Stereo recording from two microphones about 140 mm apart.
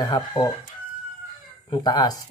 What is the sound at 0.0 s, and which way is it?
Speech, 30° left (ahead or behind).